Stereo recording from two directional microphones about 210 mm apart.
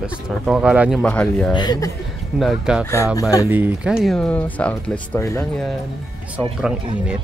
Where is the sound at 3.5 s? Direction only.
5° right (ahead or behind); by 5.6 s 15° left (ahead or behind).